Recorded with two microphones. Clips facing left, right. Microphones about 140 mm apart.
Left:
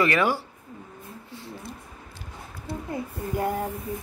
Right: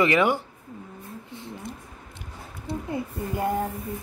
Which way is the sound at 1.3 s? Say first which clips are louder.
Right 1 dB; 20° right (ahead or behind).